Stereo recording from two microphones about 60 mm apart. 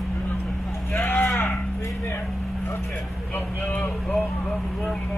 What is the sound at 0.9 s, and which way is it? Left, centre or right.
Livestock, left.